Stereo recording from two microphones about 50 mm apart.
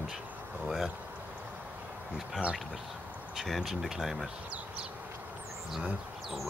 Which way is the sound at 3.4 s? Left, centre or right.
Centre.